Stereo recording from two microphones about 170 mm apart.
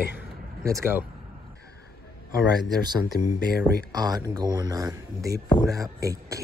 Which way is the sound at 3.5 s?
70° left (ahead or behind).